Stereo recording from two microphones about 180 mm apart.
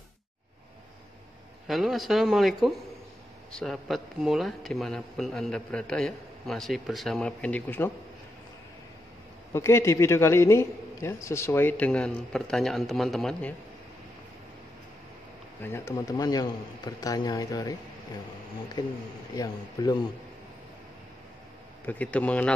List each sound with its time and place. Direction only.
1.7 s a man's voice: centre (ahead or behind)
9.5 s a man's voice: 15° left (ahead or behind)
15.6 s a man's voice: 15° left (ahead or behind)
18.8 s a man's voice: 20° left (ahead or behind)
21.8 s a man's voice: 10° left (ahead or behind)